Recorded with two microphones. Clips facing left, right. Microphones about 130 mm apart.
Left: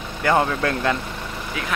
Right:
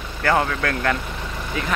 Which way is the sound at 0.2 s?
20° left (ahead or behind).